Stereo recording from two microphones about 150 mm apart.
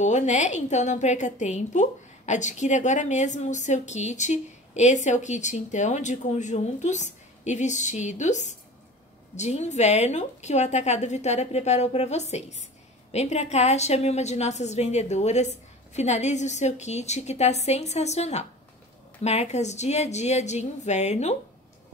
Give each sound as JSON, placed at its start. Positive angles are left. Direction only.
{"t": 0.0, "sound": "a woman's voice", "side_deg": 50}